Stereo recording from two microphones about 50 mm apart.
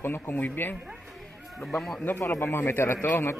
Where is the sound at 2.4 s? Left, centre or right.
Left.